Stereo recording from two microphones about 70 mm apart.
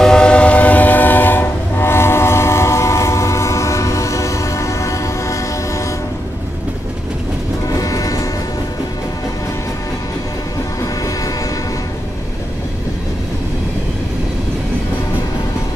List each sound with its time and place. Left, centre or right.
0.0 s train: centre; by 5.4 s left
7.7 s music: left